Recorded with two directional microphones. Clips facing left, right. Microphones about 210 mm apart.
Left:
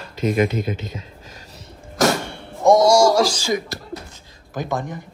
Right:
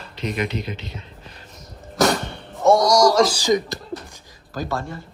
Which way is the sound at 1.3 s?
40° left (ahead or behind).